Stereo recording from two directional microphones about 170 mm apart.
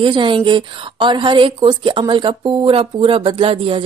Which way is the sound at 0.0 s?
30° right (ahead or behind).